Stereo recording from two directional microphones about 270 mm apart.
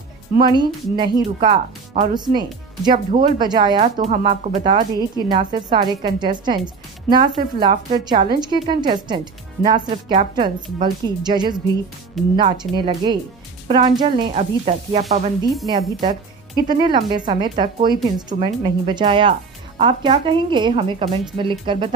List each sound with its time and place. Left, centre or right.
0.4 s speech: centre
1.4 s speech: right
2.1 s speech: centre
12.2 s speech: centre
12.7 s speech: centre